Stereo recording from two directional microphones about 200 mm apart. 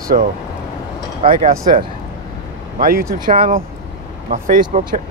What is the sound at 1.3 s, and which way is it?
Speech, 40° right (ahead or behind).